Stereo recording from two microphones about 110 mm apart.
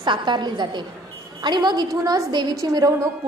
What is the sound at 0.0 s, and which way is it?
A woman's voice, 45° right (ahead or behind).